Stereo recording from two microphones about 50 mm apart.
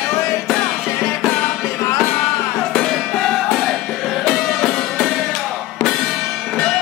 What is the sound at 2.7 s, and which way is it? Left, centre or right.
Music, centre.